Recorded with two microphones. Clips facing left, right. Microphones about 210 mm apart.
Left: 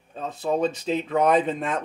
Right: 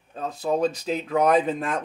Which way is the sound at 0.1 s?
Centre (ahead or behind).